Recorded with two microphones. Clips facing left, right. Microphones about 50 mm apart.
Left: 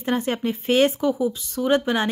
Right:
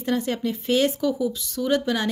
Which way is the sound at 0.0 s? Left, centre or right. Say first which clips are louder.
Left 1 dB; left.